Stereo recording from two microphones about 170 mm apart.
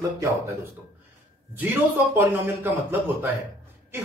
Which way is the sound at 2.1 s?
15° right (ahead or behind).